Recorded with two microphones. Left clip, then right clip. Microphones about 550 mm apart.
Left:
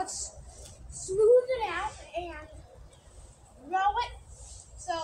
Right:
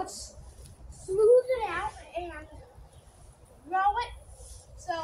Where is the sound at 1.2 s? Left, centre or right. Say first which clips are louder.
Right 1 dB; right.